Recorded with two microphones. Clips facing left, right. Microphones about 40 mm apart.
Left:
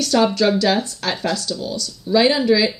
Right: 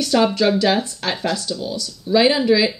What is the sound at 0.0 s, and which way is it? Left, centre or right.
Speech, centre.